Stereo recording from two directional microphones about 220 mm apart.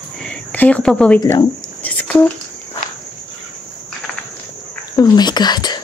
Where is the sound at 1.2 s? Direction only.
15° left (ahead or behind).